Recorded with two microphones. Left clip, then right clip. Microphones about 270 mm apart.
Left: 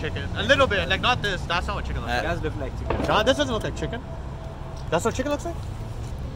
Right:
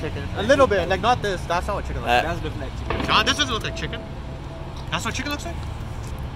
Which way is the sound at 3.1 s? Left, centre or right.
Left.